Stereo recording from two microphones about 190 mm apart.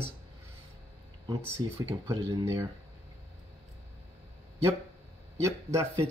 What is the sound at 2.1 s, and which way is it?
Speech, 15° right (ahead or behind).